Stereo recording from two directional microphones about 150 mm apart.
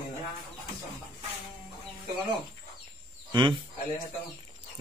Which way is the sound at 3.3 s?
30° right (ahead or behind).